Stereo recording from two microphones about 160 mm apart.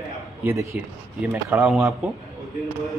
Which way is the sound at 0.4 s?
15° right (ahead or behind).